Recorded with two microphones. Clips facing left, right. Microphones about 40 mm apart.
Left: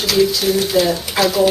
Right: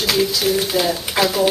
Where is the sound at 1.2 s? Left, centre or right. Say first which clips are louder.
Left 1 dB; centre.